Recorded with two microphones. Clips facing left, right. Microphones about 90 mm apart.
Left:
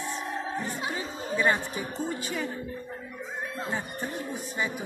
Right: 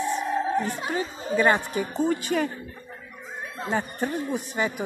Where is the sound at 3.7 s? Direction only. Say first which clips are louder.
Right 11 dB; 70° right (ahead or behind).